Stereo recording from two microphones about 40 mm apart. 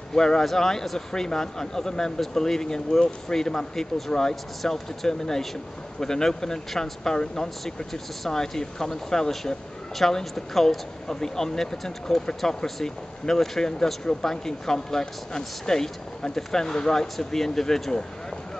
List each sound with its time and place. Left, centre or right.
0.1 s speech: centre